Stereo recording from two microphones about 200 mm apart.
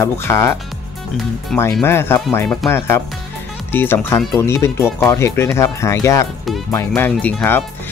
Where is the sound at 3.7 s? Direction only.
10° left (ahead or behind).